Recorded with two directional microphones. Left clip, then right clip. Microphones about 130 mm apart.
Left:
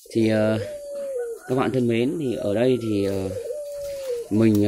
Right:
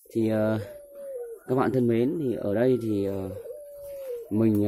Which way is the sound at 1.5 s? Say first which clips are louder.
Left 1 dB; 45° right (ahead or behind).